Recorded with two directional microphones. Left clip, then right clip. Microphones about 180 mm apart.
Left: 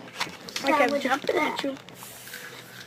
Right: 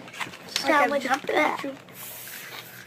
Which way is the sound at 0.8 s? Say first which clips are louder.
Right 1 dB; 25° left (ahead or behind).